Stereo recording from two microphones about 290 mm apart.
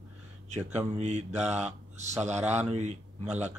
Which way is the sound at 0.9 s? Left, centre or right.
Right.